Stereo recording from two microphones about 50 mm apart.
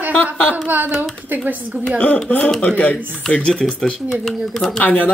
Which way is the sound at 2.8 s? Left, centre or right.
Left.